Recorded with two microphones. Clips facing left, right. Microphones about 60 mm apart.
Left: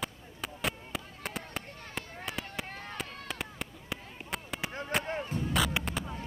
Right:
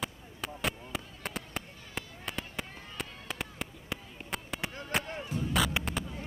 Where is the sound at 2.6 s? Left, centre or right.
Left.